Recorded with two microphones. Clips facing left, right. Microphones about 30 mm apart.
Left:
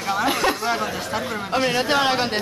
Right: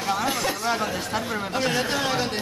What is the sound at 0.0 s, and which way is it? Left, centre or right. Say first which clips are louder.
Chatter: left 3 dB; centre.